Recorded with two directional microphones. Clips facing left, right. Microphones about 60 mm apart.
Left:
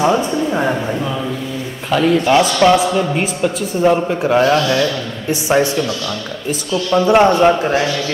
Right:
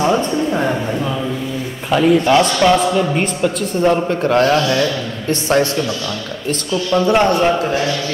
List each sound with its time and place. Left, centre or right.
0.0 s a man's voice: centre
1.9 s a man's voice: centre
2.2 s a man's voice: centre
6.9 s speech: centre